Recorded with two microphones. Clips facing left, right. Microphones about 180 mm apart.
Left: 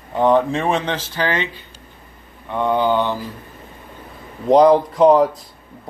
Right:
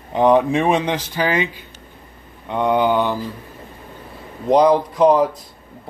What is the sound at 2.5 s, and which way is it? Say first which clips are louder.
Speech: right 1 dB; 15° right (ahead or behind).